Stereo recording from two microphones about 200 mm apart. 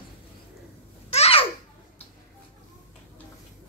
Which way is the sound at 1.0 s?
30° left (ahead or behind).